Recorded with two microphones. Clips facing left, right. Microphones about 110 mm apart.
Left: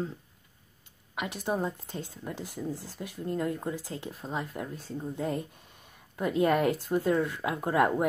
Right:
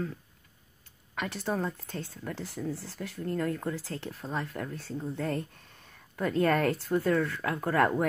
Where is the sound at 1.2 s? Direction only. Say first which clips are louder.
Left 1 dB; 15° left (ahead or behind).